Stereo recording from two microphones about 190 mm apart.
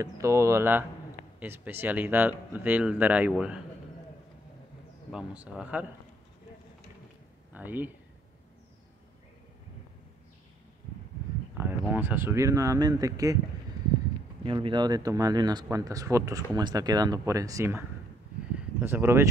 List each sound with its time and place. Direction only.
0.0 s speech: 15° right (ahead or behind)
5.1 s speech: 5° right (ahead or behind)
7.5 s speech: 10° right (ahead or behind)
11.5 s speech: 10° right (ahead or behind)
14.4 s speech: 25° right (ahead or behind)